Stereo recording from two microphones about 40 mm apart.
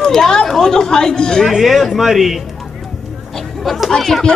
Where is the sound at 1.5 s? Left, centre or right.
Centre.